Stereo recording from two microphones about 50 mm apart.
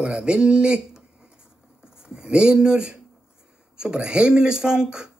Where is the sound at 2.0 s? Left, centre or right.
Centre.